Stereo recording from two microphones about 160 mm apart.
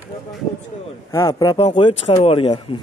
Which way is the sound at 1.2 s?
30° left (ahead or behind).